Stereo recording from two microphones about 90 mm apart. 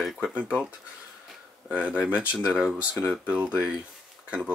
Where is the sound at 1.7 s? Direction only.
10° right (ahead or behind).